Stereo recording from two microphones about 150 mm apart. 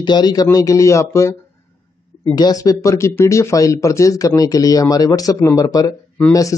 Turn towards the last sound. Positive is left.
turn(degrees=20)  # may be behind; listen again after turning